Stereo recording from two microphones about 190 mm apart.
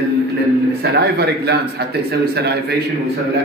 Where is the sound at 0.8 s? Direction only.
55° right (ahead or behind).